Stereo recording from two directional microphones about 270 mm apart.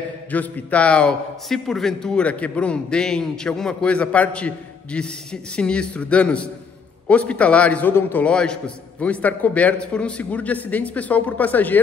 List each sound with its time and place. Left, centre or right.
0.3 s a man's voice: centre